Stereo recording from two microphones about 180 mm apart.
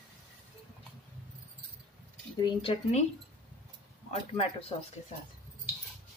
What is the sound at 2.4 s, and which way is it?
Speech, 30° left (ahead or behind).